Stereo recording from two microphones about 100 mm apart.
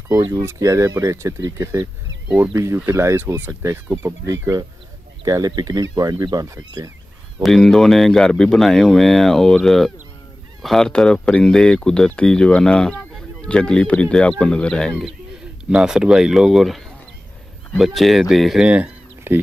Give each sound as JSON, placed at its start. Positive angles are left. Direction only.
{"t": 0.3, "sound": "speech", "side_deg": -30}
{"t": 5.2, "sound": "speech", "side_deg": -35}
{"t": 7.4, "sound": "speech", "side_deg": 5}
{"t": 19.3, "sound": "speech", "side_deg": -20}